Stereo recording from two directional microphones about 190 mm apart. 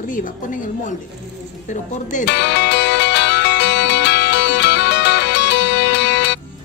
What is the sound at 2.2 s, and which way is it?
Music, 65° left (ahead or behind).